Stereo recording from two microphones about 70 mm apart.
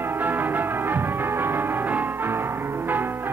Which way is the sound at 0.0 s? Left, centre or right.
Right.